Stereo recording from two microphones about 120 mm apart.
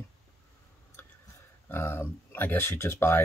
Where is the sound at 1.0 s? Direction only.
20° left (ahead or behind).